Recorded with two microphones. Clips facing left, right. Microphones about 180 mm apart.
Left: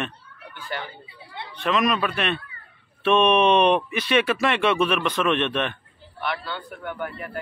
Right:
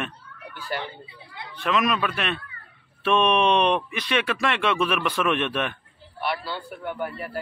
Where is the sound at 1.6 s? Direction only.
Centre (ahead or behind).